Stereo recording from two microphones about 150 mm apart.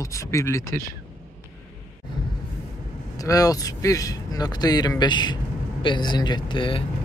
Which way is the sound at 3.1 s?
25° left (ahead or behind).